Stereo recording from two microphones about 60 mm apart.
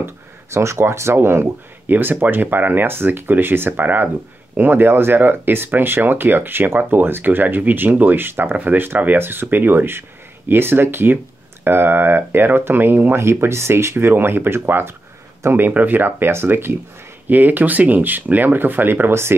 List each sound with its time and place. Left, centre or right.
0.0 s speech: right
13.2 s speech: right